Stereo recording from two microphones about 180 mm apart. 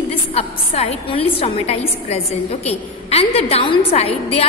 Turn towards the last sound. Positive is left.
turn(degrees=35)  # may be behind; listen again after turning